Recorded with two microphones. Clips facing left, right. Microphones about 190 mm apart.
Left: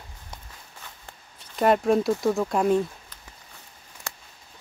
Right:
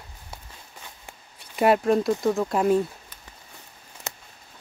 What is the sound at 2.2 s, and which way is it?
Speech, centre (ahead or behind).